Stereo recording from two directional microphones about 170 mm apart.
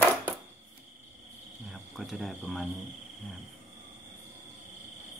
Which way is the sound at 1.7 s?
Centre (ahead or behind).